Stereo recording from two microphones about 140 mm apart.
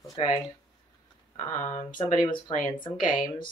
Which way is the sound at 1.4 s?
65° left (ahead or behind).